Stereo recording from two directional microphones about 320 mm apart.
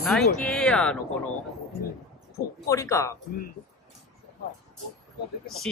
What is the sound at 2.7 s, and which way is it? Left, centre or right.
Speech, centre.